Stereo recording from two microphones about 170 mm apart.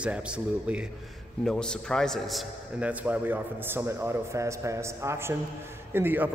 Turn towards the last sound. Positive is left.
turn(degrees=-10)  # may be behind; listen again after turning